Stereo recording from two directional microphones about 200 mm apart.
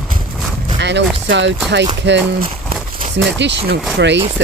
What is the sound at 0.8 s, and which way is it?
Speech, 60° right (ahead or behind).